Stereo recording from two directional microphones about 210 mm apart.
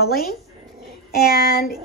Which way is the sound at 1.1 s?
45° left (ahead or behind).